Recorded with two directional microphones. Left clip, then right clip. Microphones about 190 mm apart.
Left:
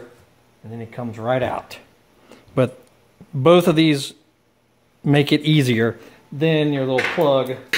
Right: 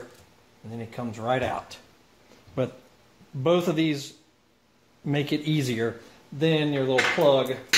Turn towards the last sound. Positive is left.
turn(degrees=40)  # may be behind; listen again after turning